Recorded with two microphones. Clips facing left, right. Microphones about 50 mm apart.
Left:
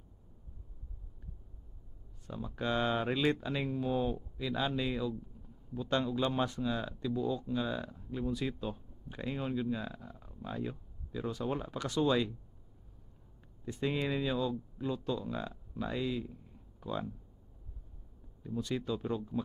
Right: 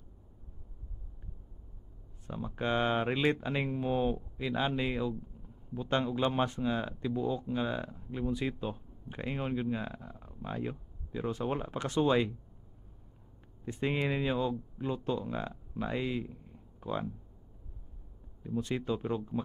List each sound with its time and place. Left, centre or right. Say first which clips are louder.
2.2 s speech: right 2 dB; right
13.7 s speech: right 2 dB; right
18.4 s speech: right 2 dB; right